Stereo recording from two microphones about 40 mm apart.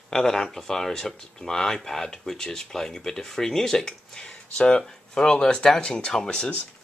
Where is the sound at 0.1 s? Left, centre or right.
Centre.